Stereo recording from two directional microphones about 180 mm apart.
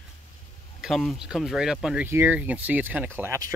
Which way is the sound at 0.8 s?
Centre (ahead or behind).